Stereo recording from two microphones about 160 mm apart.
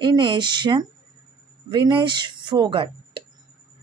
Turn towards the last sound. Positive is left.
turn(degrees=-30)  # may be behind; listen again after turning